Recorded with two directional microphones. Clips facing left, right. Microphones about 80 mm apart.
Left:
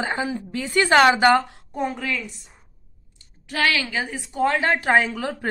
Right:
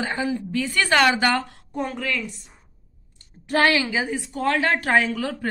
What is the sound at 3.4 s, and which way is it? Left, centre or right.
Speech, right.